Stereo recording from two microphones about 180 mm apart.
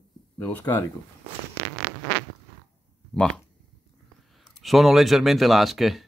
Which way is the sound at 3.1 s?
5° left (ahead or behind).